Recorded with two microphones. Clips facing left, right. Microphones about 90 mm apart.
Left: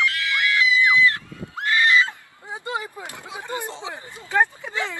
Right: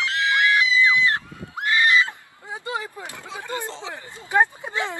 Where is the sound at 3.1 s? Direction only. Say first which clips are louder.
Even; 15° left (ahead or behind).